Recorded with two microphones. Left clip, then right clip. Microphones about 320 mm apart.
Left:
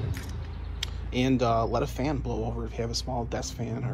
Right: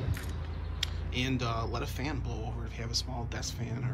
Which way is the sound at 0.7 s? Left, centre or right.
Centre.